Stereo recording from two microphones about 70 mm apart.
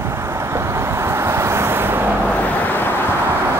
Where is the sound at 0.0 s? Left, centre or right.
Right.